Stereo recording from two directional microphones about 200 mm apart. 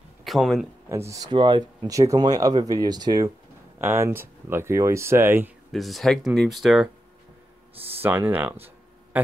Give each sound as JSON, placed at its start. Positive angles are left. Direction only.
{"t": 0.2, "sound": "speech", "side_deg": 0}
{"t": 0.8, "sound": "speech", "side_deg": -15}
{"t": 5.7, "sound": "speech", "side_deg": 0}
{"t": 7.9, "sound": "speech", "side_deg": -10}